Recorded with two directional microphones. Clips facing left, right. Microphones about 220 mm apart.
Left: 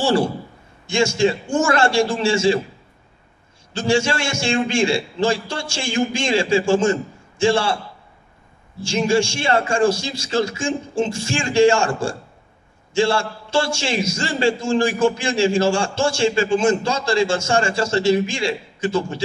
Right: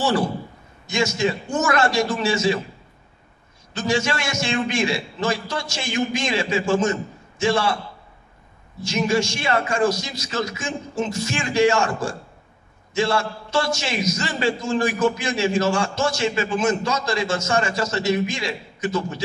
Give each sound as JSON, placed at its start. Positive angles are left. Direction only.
{"t": 0.0, "sound": "a man's voice", "side_deg": 30}
{"t": 3.7, "sound": "a man's voice", "side_deg": 30}